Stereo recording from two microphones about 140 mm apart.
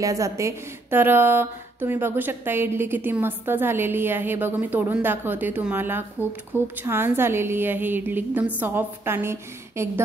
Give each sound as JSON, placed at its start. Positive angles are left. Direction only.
{"t": 0.0, "sound": "speech", "side_deg": -25}